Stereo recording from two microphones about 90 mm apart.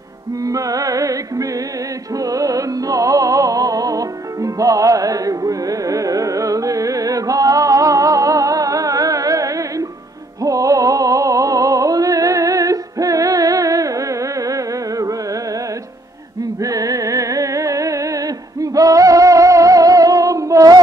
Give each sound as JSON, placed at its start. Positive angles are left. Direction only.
{"t": 0.4, "sound": "music", "side_deg": -40}
{"t": 16.6, "sound": "music", "side_deg": -40}